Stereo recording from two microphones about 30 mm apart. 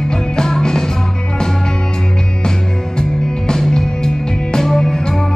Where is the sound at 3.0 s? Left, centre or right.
Left.